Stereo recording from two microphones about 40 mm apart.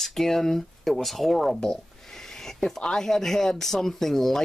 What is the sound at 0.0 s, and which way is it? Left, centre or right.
Speech, centre.